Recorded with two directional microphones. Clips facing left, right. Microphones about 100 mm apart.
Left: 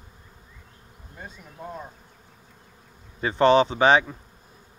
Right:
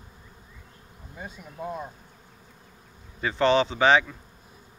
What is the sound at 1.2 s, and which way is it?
Speech, 5° right (ahead or behind).